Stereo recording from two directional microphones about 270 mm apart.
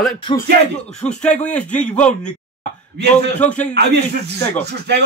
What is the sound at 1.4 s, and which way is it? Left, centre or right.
Speech, centre.